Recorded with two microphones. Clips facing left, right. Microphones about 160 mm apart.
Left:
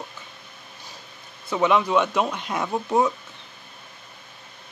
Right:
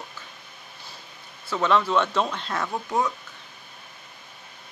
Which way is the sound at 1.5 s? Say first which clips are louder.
Left 2 dB; 15° left (ahead or behind).